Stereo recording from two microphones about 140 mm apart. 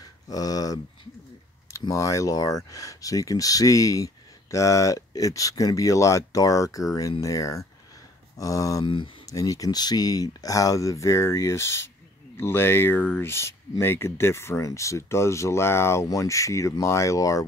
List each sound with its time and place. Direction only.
0.0 s a sound: 25° left (ahead or behind)
1.7 s speech: 20° left (ahead or behind)
8.8 s speech: 35° left (ahead or behind)
9.3 s speech: 25° left (ahead or behind)